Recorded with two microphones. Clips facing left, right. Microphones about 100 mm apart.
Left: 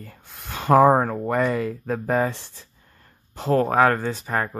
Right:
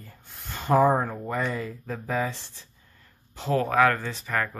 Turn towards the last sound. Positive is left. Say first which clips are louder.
# left 4 dB
turn(degrees=30)  # may be behind; listen again after turning